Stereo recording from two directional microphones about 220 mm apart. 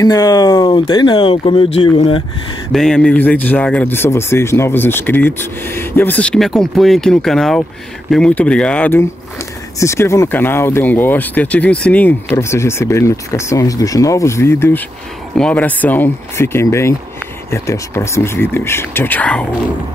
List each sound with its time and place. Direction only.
0.0 s speech: 15° left (ahead or behind)
2.7 s speech: centre (ahead or behind)